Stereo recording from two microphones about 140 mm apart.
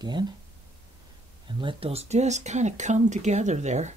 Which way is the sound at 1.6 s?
40° right (ahead or behind).